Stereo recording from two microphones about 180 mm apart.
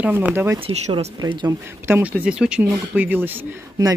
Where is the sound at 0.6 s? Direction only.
30° right (ahead or behind).